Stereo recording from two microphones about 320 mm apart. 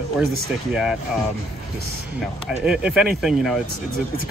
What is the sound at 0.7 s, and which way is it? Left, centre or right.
Speech, centre.